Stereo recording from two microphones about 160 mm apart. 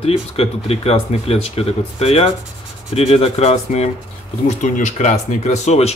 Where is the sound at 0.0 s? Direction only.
40° left (ahead or behind).